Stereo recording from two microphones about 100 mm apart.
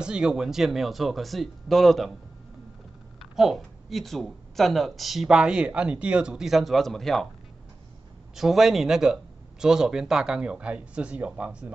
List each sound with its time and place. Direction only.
0.0 s speech: 10° right (ahead or behind)
3.2 s speech: centre (ahead or behind)
8.4 s speech: 5° right (ahead or behind)